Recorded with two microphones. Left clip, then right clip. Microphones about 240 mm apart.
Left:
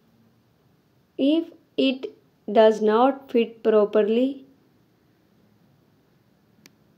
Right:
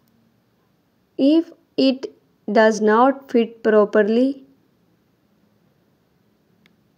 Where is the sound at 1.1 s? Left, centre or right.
Right.